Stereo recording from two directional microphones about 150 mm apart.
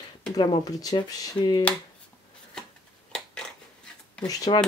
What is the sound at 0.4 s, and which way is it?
Speech, 25° left (ahead or behind).